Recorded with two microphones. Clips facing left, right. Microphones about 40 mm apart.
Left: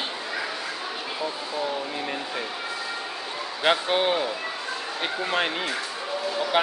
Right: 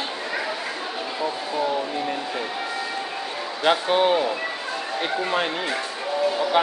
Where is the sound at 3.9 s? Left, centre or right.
Centre.